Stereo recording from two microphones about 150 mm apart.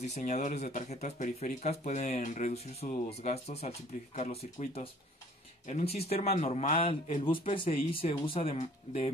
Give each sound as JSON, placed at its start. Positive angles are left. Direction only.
{"t": 0.0, "sound": "speech", "side_deg": 50}